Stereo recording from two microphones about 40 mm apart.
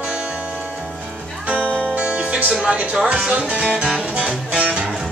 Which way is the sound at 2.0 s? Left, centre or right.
Right.